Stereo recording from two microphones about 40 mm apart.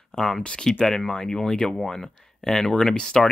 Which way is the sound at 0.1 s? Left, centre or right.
Centre.